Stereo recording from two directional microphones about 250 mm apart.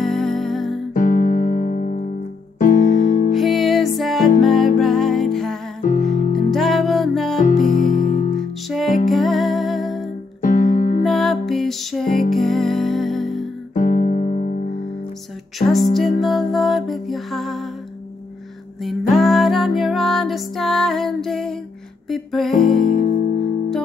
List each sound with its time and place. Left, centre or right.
0.0 s music: centre
0.9 s music: left
2.6 s piano: left
3.3 s music: centre
5.8 s music: left
6.3 s music: centre
7.4 s music: left
8.4 s music: centre
10.4 s music: left
11.1 s music: centre
13.7 s music: left
16.2 s music: centre
18.8 s music: centre
22.8 s music: left